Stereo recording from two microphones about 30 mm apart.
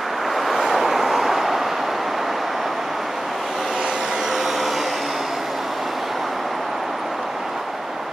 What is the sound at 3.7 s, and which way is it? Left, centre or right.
Vehicle, centre.